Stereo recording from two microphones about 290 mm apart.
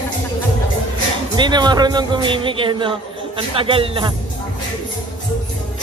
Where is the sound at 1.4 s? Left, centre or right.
Centre.